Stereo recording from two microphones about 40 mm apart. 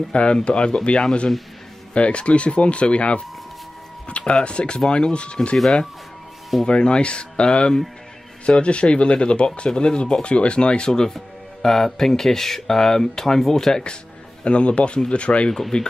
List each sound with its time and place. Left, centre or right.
0.1 s speech: left
6.6 s speech: left
14.4 s speech: left